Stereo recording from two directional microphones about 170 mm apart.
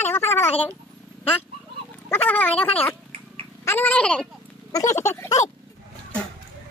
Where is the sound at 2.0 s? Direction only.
10° left (ahead or behind).